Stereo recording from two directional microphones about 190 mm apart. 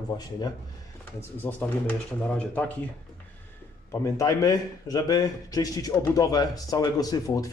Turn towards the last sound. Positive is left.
turn(degrees=15)  # may be behind; listen again after turning